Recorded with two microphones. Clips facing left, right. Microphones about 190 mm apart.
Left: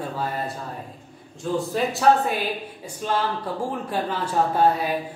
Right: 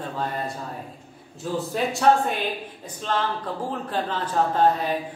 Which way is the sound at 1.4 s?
Centre (ahead or behind).